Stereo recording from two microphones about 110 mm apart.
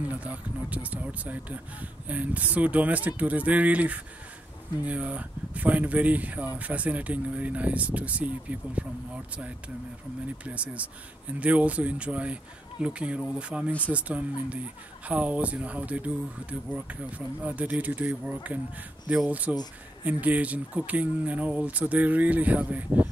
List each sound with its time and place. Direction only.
0.0 s speech: 15° right (ahead or behind)
19.5 s speech: 40° left (ahead or behind)
20.1 s speech: 15° right (ahead or behind)